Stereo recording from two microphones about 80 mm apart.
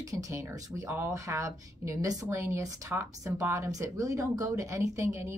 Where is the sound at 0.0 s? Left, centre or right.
Right.